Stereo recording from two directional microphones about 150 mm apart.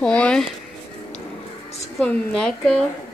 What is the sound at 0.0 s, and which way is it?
Speech, 5° left (ahead or behind).